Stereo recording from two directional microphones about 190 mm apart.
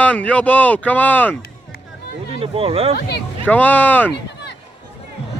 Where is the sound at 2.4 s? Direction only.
30° right (ahead or behind).